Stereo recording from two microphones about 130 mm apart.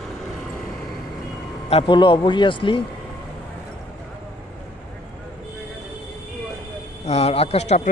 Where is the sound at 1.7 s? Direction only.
40° left (ahead or behind).